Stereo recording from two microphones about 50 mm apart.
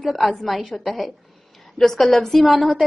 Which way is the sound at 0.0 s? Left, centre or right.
Centre.